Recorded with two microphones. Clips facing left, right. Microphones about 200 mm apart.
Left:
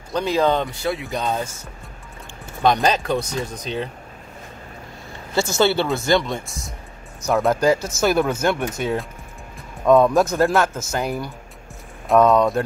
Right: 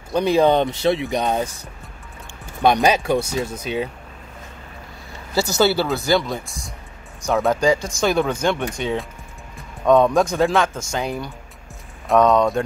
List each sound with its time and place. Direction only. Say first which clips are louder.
0.1 s speech: right 3 dB; 15° right (ahead or behind)
2.6 s speech: right 2 dB; 10° right (ahead or behind)
5.3 s speech: even; 5° right (ahead or behind)